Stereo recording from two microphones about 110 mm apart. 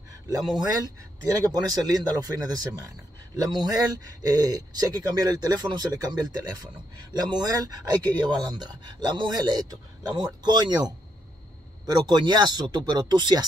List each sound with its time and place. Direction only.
1.4 s speech: 35° right (ahead or behind)